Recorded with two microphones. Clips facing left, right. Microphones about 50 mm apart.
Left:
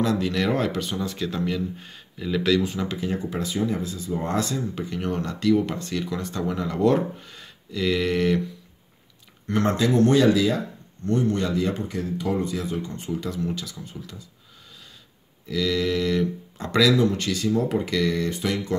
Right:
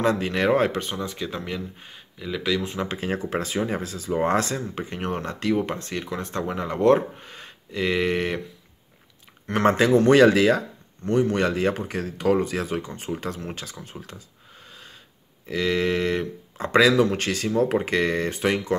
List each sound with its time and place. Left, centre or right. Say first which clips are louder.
0.0 s speech: right 1 dB; right
0.9 s speech: left 2 dB; centre
2.9 s speech: right 1 dB; right
4.7 s speech: left 1 dB; right
9.7 s speech: right 3 dB; right
12.9 s speech: left 1 dB; right
15.4 s speech: right 1 dB; right
17.1 s speech: even; right